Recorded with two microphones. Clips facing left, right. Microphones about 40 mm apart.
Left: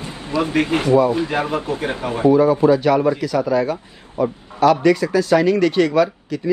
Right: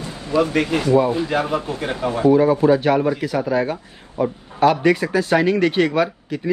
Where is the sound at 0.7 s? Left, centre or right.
Left.